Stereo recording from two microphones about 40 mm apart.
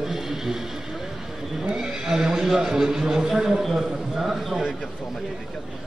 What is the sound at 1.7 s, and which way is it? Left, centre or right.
A man's voice, centre.